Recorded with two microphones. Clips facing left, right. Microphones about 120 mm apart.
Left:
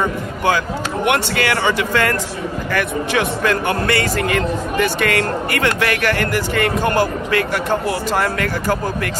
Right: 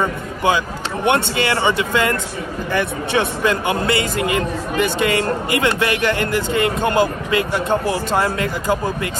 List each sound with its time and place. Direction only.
1.0 s speech: 25° right (ahead or behind)